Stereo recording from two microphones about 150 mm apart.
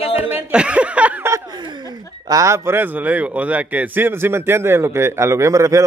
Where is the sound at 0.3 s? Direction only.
5° right (ahead or behind).